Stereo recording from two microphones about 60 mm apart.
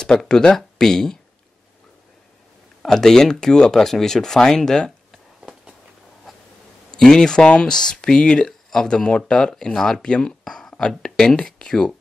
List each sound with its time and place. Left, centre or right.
0.2 s speech: centre
2.8 s speech: centre
5.1 s a sound: centre
6.3 s writing: centre
7.0 s speech: centre